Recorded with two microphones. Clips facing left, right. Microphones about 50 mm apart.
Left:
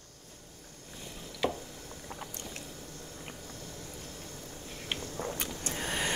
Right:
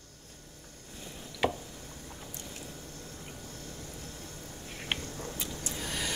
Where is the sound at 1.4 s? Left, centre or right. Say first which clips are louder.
Right 2 dB; right.